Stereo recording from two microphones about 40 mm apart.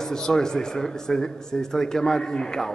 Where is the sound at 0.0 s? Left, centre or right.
Centre.